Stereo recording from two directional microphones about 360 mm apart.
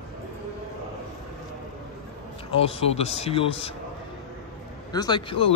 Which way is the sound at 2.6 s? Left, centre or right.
Centre.